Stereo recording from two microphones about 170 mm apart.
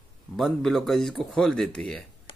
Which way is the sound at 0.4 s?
Centre (ahead or behind).